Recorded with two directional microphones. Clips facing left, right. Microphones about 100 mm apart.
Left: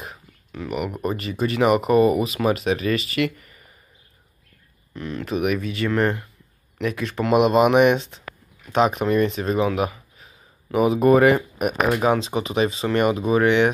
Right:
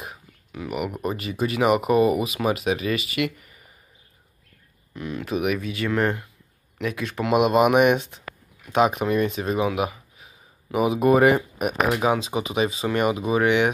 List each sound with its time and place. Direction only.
0.0 s speech: 10° right (ahead or behind)
4.9 s speech: 10° right (ahead or behind)
11.5 s speech: 5° right (ahead or behind)